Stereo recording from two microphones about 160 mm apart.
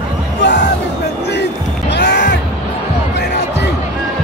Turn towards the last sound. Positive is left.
turn(degrees=90)